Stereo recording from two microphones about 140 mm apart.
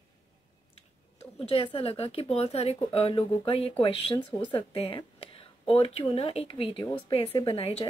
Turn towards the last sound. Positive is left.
turn(degrees=45)  # may be behind; listen again after turning